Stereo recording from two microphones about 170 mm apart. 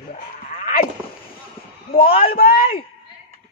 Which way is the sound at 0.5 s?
50° left (ahead or behind).